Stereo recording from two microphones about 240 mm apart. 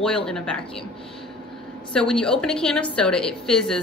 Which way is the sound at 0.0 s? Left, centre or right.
Centre.